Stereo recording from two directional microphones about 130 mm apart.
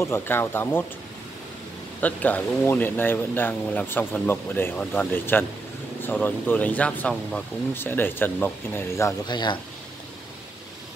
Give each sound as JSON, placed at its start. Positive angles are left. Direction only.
{"t": 0.0, "sound": "speech", "side_deg": 15}
{"t": 2.0, "sound": "speech", "side_deg": 10}
{"t": 9.2, "sound": "speech", "side_deg": 35}